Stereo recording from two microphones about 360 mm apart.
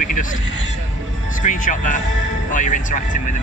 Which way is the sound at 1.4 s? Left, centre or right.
Left.